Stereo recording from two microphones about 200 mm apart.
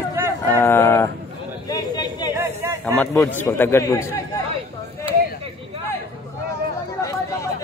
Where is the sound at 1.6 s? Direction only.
20° left (ahead or behind).